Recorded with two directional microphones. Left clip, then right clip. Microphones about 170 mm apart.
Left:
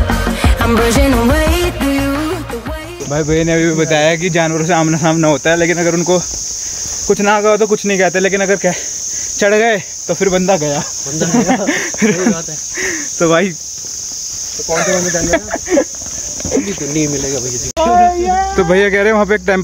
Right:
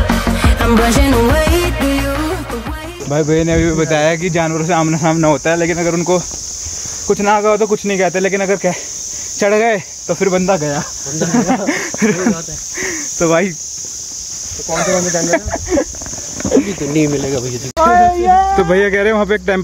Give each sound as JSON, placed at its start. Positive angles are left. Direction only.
{"t": 0.4, "sound": "music", "side_deg": 0}
{"t": 3.1, "sound": "speech", "side_deg": -15}
{"t": 12.8, "sound": "cricket", "side_deg": 5}
{"t": 14.7, "sound": "a child's voice", "side_deg": -10}
{"t": 16.5, "sound": "speech", "side_deg": -50}
{"t": 17.8, "sound": "a child's voice", "side_deg": -15}
{"t": 18.6, "sound": "speech", "side_deg": 10}